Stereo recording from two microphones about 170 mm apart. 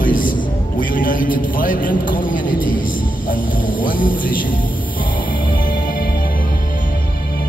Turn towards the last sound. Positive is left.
turn(degrees=55)  # may be behind; listen again after turning